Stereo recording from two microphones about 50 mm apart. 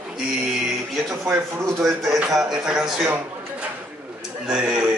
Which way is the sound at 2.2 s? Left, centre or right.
Centre.